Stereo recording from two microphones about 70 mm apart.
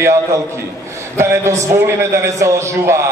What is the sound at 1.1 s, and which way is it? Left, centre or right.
A man's voice, right.